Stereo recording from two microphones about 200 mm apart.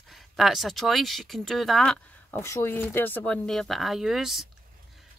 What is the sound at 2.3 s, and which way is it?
Speech, 15° left (ahead or behind).